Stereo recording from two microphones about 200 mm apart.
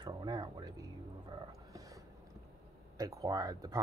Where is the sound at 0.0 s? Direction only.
20° right (ahead or behind).